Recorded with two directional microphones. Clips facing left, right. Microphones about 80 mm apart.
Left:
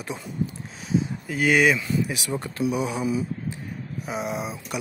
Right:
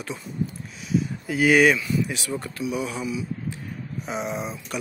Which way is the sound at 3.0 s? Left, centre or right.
Left.